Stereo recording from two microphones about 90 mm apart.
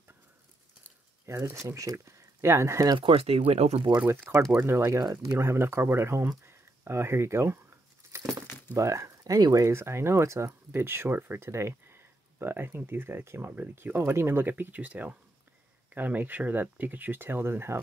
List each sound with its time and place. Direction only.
1.2 s speech: 30° right (ahead or behind)
3.0 s speech: 80° right
4.0 s speech: 20° right (ahead or behind)
4.6 s speech: 30° right (ahead or behind)
5.4 s speech: 30° right (ahead or behind)
8.1 s crumpling: 30° right (ahead or behind)
8.7 s speech: 35° right (ahead or behind)